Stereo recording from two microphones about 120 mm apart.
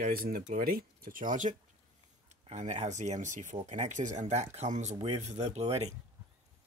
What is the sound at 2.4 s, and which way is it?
Speech, 75° right (ahead or behind).